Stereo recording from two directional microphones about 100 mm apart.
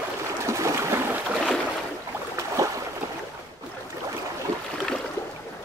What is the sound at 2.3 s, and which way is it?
Boat, 30° right (ahead or behind).